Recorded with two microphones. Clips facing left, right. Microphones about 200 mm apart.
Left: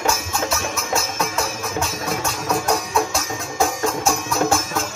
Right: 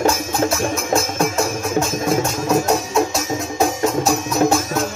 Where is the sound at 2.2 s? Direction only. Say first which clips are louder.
Right 5 dB; 20° right (ahead or behind).